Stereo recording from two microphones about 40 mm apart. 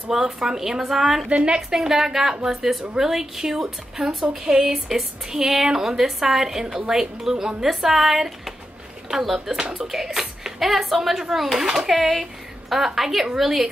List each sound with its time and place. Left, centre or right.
0.1 s speech: centre
1.3 s a woman's voice: right
1.7 s speech: centre